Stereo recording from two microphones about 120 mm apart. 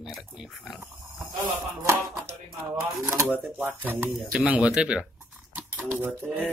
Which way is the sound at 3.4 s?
15° right (ahead or behind).